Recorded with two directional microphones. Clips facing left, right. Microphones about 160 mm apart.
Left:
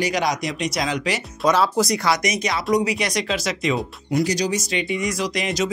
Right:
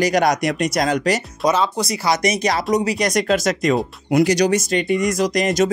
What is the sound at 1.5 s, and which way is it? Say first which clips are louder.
Speech: left 1 dB; centre (ahead or behind).